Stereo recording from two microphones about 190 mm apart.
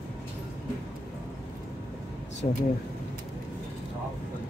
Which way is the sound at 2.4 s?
30° left (ahead or behind).